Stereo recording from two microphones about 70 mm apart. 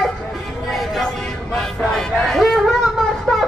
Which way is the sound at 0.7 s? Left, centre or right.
Centre.